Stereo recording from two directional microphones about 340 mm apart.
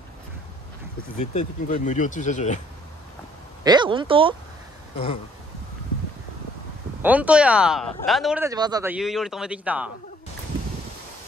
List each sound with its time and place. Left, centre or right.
1.2 s speech: left
3.6 s speech: centre
4.9 s speech: centre
7.0 s speech: centre